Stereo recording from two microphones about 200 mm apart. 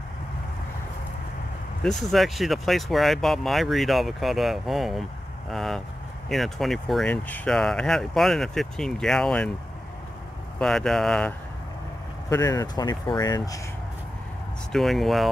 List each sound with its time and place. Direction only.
1.8 s speech: centre (ahead or behind)
10.6 s speech: centre (ahead or behind)
12.3 s speech: 20° left (ahead or behind)
14.7 s speech: centre (ahead or behind)